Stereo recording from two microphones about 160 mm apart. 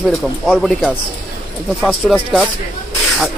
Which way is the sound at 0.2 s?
Centre (ahead or behind).